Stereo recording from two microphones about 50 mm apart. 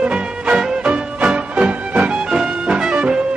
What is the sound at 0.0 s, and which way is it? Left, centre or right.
Music, right.